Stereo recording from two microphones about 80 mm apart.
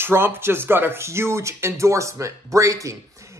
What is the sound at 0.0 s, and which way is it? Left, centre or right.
A man's voice, right.